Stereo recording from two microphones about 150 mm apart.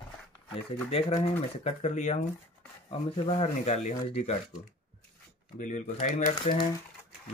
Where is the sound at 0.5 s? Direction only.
40° left (ahead or behind).